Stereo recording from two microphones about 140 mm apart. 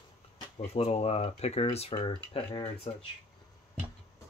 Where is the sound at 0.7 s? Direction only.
45° left (ahead or behind).